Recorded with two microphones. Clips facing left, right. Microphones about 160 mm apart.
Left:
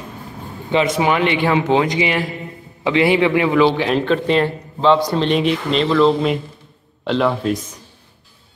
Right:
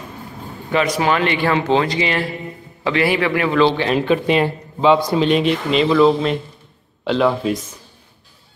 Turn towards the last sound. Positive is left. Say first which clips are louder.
# right 1 dB
turn(degrees=0)  # may be behind; listen again after turning